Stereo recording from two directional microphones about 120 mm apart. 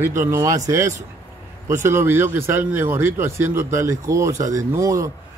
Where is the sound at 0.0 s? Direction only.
20° right (ahead or behind).